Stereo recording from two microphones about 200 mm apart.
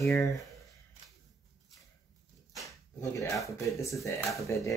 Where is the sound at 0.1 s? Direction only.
15° left (ahead or behind).